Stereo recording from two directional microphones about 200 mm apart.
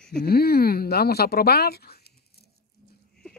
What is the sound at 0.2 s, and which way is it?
Speech, 50° left (ahead or behind).